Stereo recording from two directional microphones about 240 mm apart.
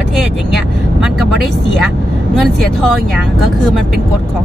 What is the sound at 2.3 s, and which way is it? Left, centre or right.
Speech, centre.